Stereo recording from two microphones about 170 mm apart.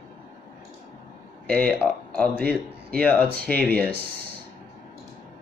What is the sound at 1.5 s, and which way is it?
Speech, 5° left (ahead or behind).